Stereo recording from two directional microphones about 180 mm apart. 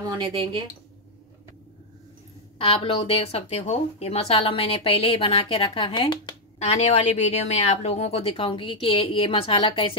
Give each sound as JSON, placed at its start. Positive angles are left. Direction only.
{"t": 0.0, "sound": "speech", "side_deg": -20}
{"t": 2.6, "sound": "speech", "side_deg": 30}
{"t": 6.7, "sound": "speech", "side_deg": 40}